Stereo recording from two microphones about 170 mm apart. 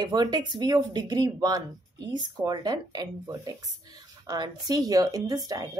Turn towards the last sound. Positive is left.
turn(degrees=-20)  # may be behind; listen again after turning